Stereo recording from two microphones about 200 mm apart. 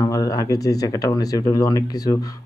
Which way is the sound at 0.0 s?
15° left (ahead or behind).